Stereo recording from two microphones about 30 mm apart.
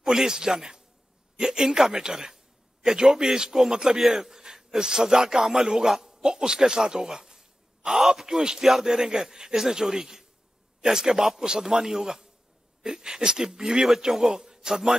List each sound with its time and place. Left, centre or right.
0.0 s a man's voice: centre
4.0 s a man's voice: centre
8.3 s a man's voice: right
13.8 s a man's voice: centre